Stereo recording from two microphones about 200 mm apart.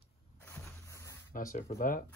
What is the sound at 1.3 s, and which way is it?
Speech, 40° left (ahead or behind).